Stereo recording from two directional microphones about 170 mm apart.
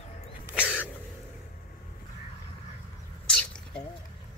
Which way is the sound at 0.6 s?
10° left (ahead or behind).